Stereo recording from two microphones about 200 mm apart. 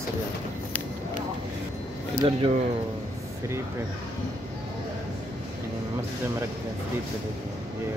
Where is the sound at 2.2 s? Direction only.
25° right (ahead or behind).